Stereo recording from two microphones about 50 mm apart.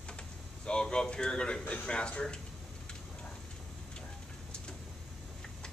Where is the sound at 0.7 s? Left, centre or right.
Centre.